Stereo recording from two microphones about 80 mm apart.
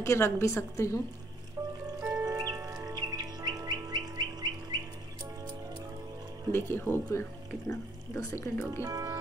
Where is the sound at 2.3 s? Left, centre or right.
Right.